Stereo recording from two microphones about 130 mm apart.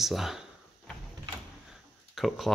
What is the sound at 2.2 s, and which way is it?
Speech, centre (ahead or behind).